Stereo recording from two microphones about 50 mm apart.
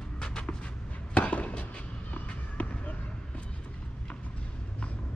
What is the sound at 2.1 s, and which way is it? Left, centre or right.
Basketball bounce, left.